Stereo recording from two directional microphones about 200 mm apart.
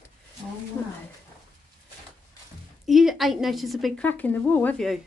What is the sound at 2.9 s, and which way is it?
A woman's voice, centre (ahead or behind).